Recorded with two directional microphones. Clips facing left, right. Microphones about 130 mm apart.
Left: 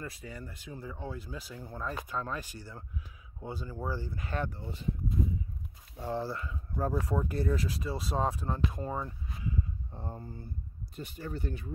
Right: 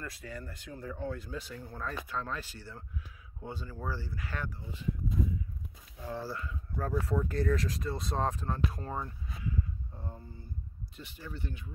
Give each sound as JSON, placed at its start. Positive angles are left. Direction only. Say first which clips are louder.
{"t": 0.0, "sound": "speech", "louder": "even", "side_deg": 10}
{"t": 5.9, "sound": "speech", "louder": "left 4 dB", "side_deg": 25}
{"t": 9.5, "sound": "a sound", "louder": "left 1 dB", "side_deg": 25}
{"t": 11.0, "sound": "speech", "louder": "left 5 dB", "side_deg": 45}